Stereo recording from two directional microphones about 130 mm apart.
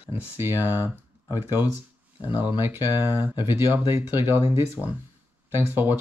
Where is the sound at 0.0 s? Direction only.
15° right (ahead or behind).